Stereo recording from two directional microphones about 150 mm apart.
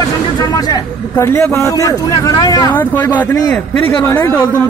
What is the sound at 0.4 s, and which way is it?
A man's voice, 25° left (ahead or behind).